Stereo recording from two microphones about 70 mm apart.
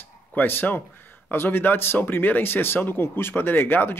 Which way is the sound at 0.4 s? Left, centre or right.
Left.